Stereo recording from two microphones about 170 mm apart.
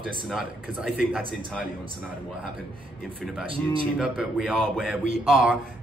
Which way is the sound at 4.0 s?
5° right (ahead or behind).